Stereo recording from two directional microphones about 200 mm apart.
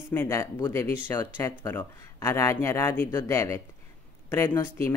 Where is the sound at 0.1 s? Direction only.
10° left (ahead or behind).